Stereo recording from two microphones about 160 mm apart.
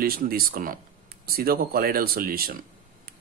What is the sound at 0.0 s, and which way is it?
Speech, 70° right (ahead or behind).